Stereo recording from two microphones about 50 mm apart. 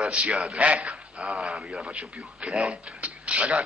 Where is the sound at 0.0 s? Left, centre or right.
Right.